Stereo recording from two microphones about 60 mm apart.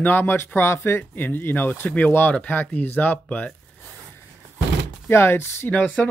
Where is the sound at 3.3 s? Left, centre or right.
Centre.